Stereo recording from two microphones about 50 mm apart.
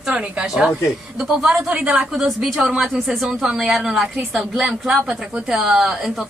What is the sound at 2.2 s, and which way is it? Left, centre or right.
A woman's voice, centre.